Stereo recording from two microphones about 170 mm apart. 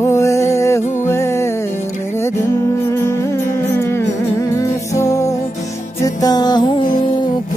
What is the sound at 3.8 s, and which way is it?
Music, 15° left (ahead or behind).